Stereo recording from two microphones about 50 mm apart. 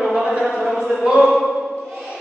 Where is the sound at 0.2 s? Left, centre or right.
Centre.